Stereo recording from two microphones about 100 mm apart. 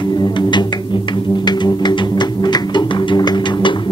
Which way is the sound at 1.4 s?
45° left (ahead or behind).